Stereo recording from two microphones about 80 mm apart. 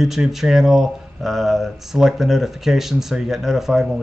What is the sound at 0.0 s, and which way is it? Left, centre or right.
Speech, centre.